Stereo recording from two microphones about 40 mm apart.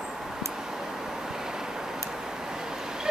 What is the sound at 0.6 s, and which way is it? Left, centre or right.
Vehicle, centre.